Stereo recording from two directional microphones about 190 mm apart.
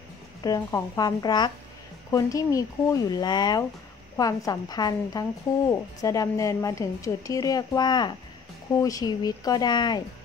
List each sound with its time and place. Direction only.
0.4 s a woman's voice: 15° left (ahead or behind)